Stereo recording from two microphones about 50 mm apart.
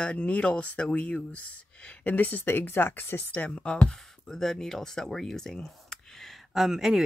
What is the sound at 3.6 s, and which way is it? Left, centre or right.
Speech, centre.